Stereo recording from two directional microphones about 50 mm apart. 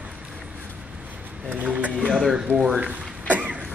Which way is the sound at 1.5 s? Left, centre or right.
Right.